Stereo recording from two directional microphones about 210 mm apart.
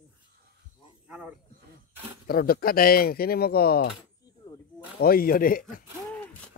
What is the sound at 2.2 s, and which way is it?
Speech, 45° left (ahead or behind).